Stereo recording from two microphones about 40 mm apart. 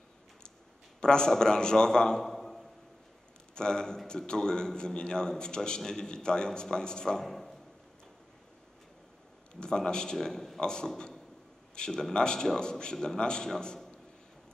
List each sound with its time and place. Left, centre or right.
1.0 s a man's voice: centre
2.3 s a sound: centre
3.5 s a man's voice: centre
9.6 s a man's voice: centre